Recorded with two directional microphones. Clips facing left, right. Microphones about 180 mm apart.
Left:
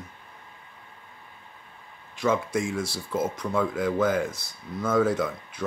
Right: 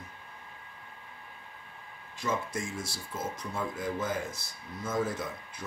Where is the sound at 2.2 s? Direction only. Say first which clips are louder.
Left 8 dB; 75° left (ahead or behind).